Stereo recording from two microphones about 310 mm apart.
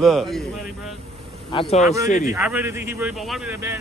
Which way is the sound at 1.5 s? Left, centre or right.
Centre.